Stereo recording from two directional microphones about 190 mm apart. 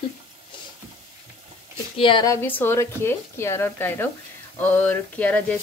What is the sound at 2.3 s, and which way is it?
A woman's voice, 10° left (ahead or behind).